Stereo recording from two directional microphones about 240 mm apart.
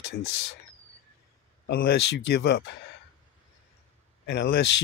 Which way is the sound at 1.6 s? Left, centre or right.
Left.